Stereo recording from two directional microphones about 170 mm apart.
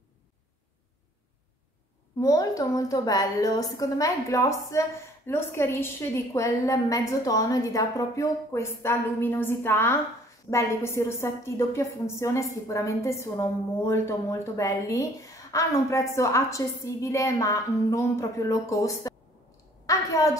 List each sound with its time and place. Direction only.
2.1 s a woman's voice: 20° left (ahead or behind)